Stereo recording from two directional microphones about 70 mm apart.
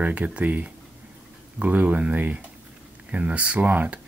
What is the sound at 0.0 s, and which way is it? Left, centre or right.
Speech, right.